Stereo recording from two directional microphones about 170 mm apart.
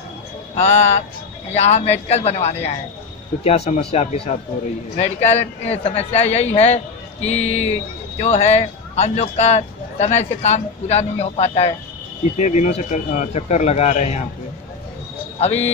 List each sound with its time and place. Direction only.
0.6 s a man's voice: 40° left (ahead or behind)
15.3 s speech: 40° left (ahead or behind)